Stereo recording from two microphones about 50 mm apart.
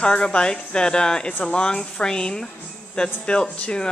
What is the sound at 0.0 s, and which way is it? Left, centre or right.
Speech, centre.